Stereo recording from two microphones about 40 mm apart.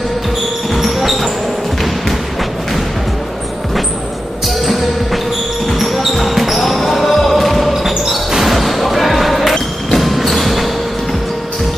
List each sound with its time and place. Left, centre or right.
0.7 s basketball bounce: centre
5.7 s basketball bounce: centre
9.9 s a sound: centre